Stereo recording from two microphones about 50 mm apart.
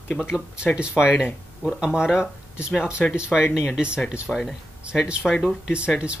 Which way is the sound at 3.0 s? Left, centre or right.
Centre.